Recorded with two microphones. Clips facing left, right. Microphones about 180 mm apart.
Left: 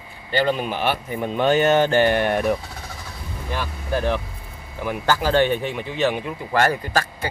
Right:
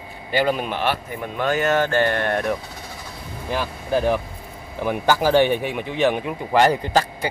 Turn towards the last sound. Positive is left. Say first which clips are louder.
# right 3 dB
turn(degrees=-15)  # may be behind; listen again after turning